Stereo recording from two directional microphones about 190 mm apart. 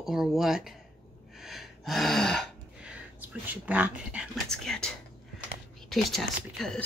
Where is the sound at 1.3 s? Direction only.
Centre (ahead or behind).